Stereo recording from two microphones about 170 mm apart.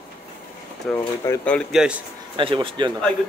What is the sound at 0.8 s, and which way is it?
Speech, 15° left (ahead or behind).